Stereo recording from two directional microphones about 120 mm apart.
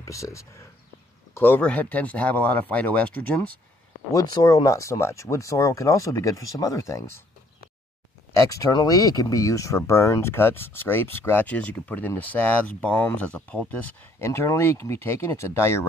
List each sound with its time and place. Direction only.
0.0 s speech: 25° left (ahead or behind)
4.1 s speech: 30° left (ahead or behind)
8.3 s speech: 25° left (ahead or behind); by 13.7 s 10° left (ahead or behind)
14.2 s speech: 20° left (ahead or behind)